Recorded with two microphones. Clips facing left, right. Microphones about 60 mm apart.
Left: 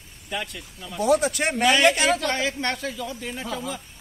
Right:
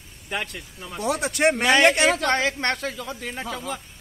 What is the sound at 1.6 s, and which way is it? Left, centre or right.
Speech, right.